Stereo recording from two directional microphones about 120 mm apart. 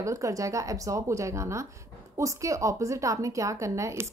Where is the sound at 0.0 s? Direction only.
25° right (ahead or behind).